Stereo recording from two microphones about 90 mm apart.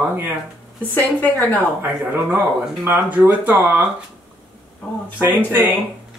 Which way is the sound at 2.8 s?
25° right (ahead or behind).